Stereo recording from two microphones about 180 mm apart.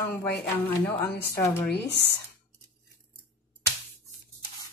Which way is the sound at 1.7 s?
70° left (ahead or behind).